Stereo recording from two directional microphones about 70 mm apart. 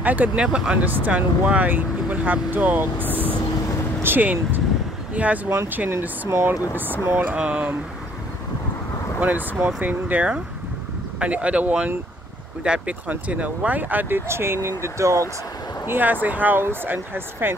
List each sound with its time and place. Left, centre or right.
0.0 s speech: right
3.1 s speech: left
4.0 s speech: right
5.9 s speech: right
6.9 s speech: right
7.3 s speech: centre
9.2 s speech: right
15.9 s speech: right